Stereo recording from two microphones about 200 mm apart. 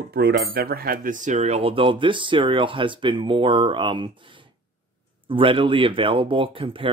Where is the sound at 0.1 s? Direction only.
55° right (ahead or behind).